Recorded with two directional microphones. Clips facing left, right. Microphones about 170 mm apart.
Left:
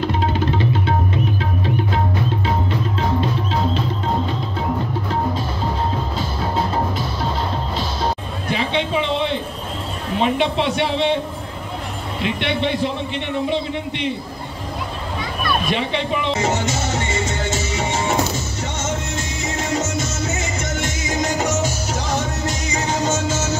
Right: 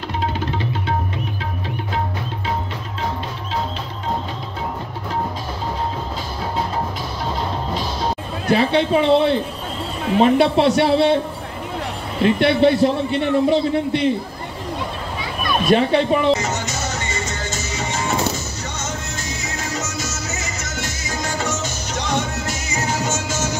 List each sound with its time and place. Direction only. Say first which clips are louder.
8.5 s a man's voice: right 5 dB; 40° right (ahead or behind)
12.2 s a man's voice: right 7 dB; 40° right (ahead or behind)
15.7 s speech: right 6 dB; 45° right (ahead or behind)
16.3 s music: left 4 dB; 25° left (ahead or behind)
19.8 s music: left 4 dB; 30° left (ahead or behind)
21.3 s music: left 2 dB; 10° left (ahead or behind); by 23.5 s 10° right (ahead or behind)